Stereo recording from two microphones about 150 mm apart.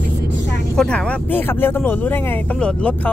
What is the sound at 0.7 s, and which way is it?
Speech, 5° left (ahead or behind).